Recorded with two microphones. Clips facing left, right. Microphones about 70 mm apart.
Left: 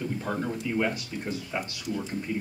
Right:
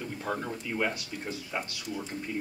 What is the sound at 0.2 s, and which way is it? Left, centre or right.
Speech, centre.